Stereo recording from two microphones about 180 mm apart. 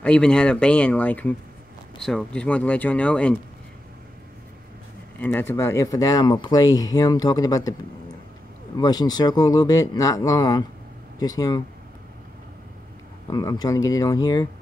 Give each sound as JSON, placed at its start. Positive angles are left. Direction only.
{"t": 0.0, "sound": "speech", "side_deg": 5}
{"t": 5.2, "sound": "speech", "side_deg": 10}
{"t": 8.7, "sound": "speech", "side_deg": 20}
{"t": 13.3, "sound": "speech", "side_deg": 20}